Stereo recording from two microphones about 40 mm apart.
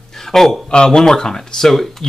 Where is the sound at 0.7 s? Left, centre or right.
Left.